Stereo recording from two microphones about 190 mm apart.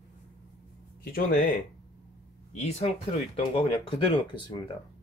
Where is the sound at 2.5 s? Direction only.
35° left (ahead or behind).